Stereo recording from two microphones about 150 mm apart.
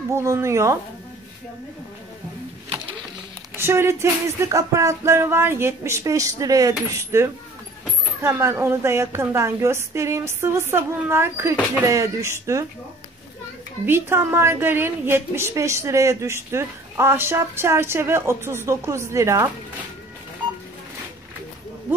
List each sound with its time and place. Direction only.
0.1 s music: 20° right (ahead or behind)
3.5 s music: 15° right (ahead or behind)
8.2 s a woman's voice: 20° right (ahead or behind)
13.8 s a woman's voice: 15° right (ahead or behind)